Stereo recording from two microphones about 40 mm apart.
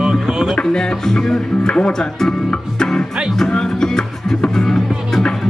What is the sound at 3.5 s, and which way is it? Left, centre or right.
Music, centre.